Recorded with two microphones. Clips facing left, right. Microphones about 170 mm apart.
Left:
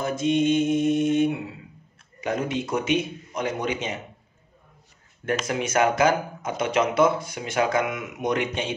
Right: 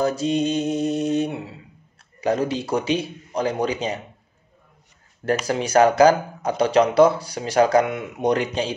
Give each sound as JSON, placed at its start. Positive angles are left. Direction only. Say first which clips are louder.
{"t": 0.0, "sound": "speech", "louder": "right 1 dB", "side_deg": -35}
{"t": 5.2, "sound": "speech", "louder": "right 4 dB", "side_deg": -35}